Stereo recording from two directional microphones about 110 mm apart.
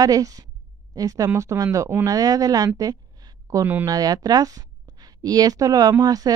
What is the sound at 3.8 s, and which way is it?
Speech, 35° right (ahead or behind).